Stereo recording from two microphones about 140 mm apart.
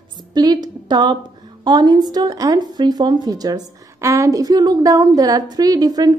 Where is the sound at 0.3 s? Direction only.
30° right (ahead or behind).